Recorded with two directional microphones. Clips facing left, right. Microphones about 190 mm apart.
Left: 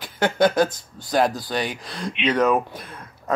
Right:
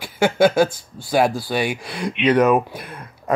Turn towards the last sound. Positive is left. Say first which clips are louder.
# right 3 dB
turn(degrees=-10)  # may be behind; listen again after turning